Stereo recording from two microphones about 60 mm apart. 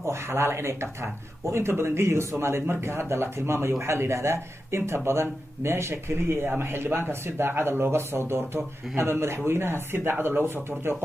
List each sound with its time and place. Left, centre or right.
0.0 s speech: right